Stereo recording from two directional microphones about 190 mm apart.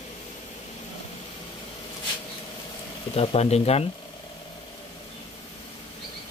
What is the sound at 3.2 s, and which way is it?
Speech, 35° left (ahead or behind).